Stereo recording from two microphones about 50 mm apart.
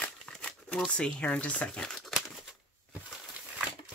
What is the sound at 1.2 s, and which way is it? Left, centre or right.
Speech, left.